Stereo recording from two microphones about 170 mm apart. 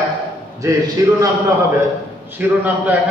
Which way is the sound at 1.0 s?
15° right (ahead or behind).